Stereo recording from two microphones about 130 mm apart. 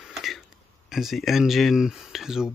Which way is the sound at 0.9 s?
Centre (ahead or behind).